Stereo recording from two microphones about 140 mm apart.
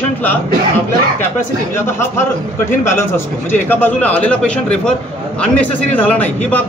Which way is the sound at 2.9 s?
15° left (ahead or behind).